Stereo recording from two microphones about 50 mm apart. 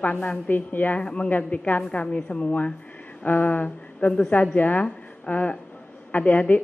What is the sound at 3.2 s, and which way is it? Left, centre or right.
A woman's voice, left.